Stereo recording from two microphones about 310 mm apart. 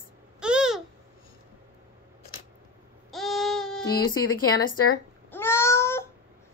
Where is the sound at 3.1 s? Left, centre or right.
Centre.